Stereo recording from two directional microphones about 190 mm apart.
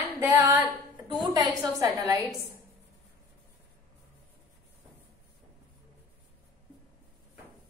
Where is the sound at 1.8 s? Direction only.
15° right (ahead or behind).